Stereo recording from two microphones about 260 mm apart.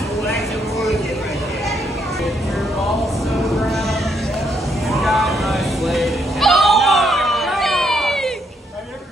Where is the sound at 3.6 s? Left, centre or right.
Centre.